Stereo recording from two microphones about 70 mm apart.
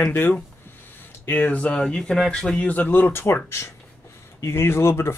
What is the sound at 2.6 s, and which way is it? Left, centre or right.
Speech, left.